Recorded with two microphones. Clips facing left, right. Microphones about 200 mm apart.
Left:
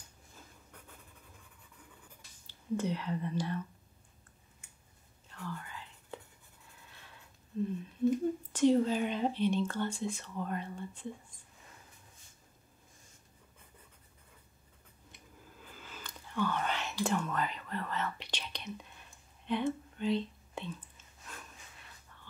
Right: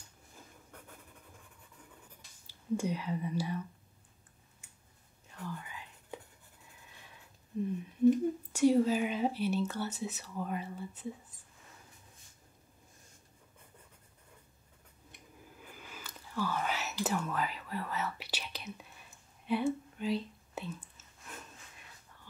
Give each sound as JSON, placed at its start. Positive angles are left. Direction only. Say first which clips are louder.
{"t": 2.4, "sound": "speech", "louder": "even", "side_deg": -10}
{"t": 5.3, "sound": "whispering", "louder": "even", "side_deg": -15}
{"t": 7.5, "sound": "a sound", "louder": "even", "side_deg": -15}
{"t": 8.5, "sound": "speech", "louder": "right 1 dB", "side_deg": -10}
{"t": 15.7, "sound": "whispering", "louder": "left 1 dB", "side_deg": -10}
{"t": 21.3, "sound": "breathing", "louder": "right 2 dB", "side_deg": -20}